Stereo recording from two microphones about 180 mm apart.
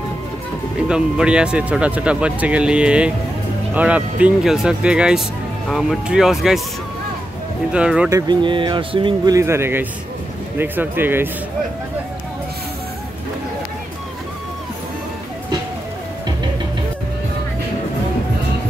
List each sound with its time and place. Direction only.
0.8 s speech: 5° right (ahead or behind)
7.7 s speech: 5° right (ahead or behind)
8.1 s speech: 25° right (ahead or behind)